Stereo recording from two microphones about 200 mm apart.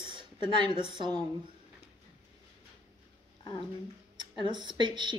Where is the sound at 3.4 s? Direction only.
25° left (ahead or behind).